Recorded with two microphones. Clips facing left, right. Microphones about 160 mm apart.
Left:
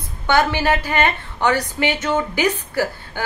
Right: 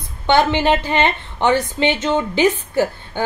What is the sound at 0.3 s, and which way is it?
A woman's voice, 20° right (ahead or behind).